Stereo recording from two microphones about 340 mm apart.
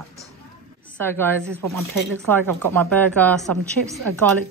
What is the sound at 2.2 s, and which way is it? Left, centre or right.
Speech, centre.